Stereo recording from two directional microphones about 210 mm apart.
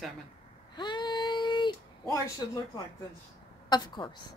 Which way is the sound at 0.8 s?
20° left (ahead or behind).